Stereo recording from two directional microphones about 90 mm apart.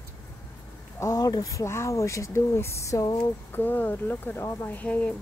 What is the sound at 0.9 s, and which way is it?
Speech, 35° left (ahead or behind).